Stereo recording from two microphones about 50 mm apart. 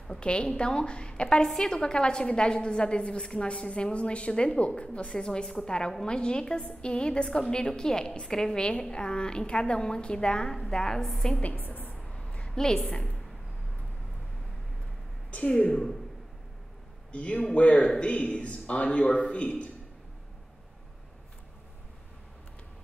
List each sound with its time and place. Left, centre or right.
0.2 s a woman's voice: centre
11.4 s a woman's voice: left
12.1 s a sound: centre
12.5 s a woman's voice: centre
12.9 s a woman's voice: centre
15.3 s a woman's voice: left
17.1 s a woman's voice: left